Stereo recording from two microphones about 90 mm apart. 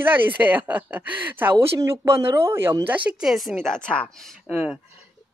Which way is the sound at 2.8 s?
15° right (ahead or behind).